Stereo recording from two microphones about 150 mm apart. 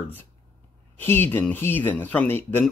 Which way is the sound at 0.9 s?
15° left (ahead or behind).